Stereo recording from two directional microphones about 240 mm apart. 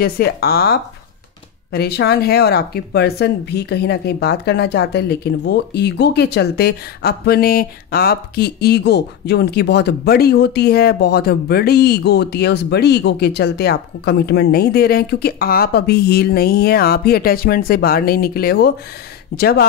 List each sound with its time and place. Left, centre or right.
0.0 s speech: left